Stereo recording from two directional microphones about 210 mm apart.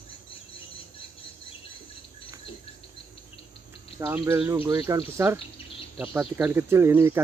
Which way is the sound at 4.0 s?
10° right (ahead or behind).